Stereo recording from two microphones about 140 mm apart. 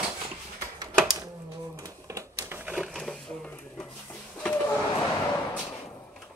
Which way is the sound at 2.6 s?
5° right (ahead or behind).